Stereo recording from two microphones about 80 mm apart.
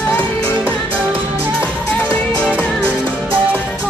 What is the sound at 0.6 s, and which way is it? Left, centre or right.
Music, right.